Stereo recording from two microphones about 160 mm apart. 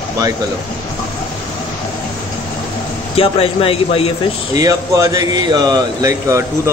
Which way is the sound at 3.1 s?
35° left (ahead or behind).